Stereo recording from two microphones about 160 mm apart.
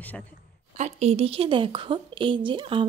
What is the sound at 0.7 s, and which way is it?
Speech, 45° right (ahead or behind).